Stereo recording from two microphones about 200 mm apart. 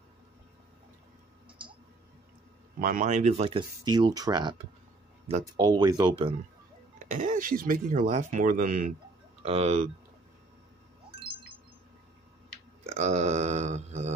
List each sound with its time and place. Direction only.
2.8 s speech: 40° right (ahead or behind)
5.6 s speech: 20° right (ahead or behind)
7.1 s speech: 40° right (ahead or behind)
9.4 s speech: 30° right (ahead or behind)
11.1 s chime: 25° right (ahead or behind)
12.8 s speech: 35° right (ahead or behind)